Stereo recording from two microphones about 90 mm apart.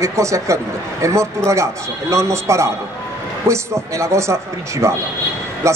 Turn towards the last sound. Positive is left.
turn(degrees=-30)  # may be behind; listen again after turning